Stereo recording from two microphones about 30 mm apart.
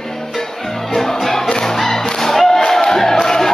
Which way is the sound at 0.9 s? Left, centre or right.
Centre.